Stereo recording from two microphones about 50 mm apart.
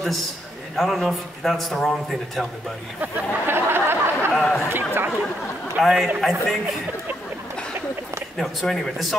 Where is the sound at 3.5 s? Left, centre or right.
Right.